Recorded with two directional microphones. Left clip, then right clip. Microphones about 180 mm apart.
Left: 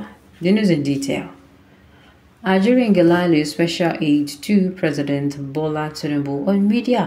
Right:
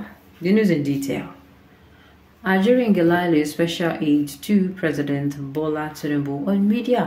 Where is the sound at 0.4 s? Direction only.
15° left (ahead or behind).